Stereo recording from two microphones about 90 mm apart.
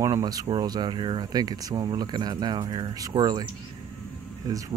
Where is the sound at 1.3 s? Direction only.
45° right (ahead or behind).